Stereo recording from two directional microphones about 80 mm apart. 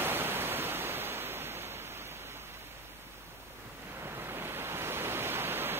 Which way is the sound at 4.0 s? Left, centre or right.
Right.